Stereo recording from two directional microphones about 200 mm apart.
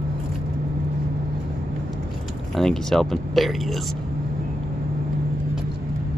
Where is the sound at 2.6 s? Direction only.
Centre (ahead or behind).